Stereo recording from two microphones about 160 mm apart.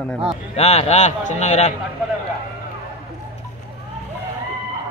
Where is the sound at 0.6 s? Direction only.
40° left (ahead or behind).